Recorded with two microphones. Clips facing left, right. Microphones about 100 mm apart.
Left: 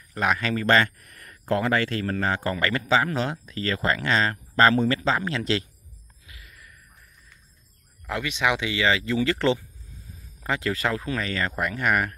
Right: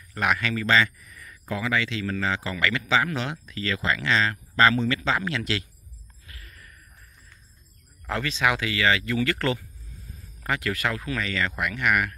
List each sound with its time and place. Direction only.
0.1 s speech: 30° left (ahead or behind); by 1.3 s 60° left (ahead or behind)
1.5 s speech: 50° left (ahead or behind); by 5.7 s 35° left (ahead or behind)
6.2 s a sound: 15° left (ahead or behind)
8.1 s speech: 15° left (ahead or behind); by 12.2 s 35° left (ahead or behind)